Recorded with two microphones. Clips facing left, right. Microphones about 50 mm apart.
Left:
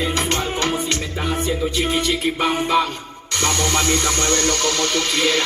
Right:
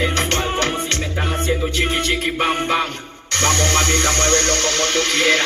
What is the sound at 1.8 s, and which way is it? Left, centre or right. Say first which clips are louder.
Music: left 1 dB; right.